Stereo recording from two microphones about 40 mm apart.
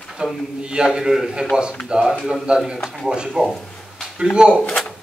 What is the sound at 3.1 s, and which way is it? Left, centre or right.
A man's voice, right.